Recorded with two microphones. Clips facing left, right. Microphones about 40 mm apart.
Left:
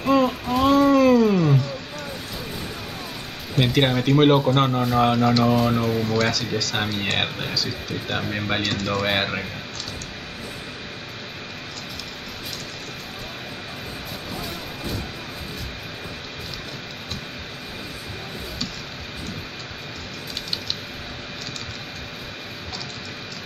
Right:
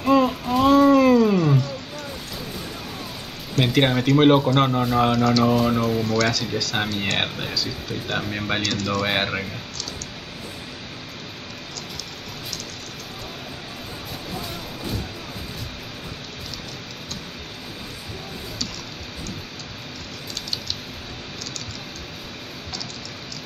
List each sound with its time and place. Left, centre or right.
0.0 s a sound: centre
3.5 s speech: centre
5.1 s speech: centre
5.4 s speech: centre
6.0 s speech: left
6.6 s speech: centre
8.6 s speech: centre
9.0 s speech: centre